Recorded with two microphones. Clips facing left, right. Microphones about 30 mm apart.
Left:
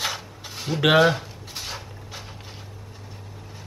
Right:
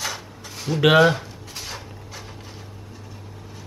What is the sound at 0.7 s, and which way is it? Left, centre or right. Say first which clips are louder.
Speech: right 2 dB; centre.